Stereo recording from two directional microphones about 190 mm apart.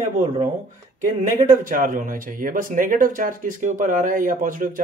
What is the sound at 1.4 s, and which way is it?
Speech, 45° right (ahead or behind).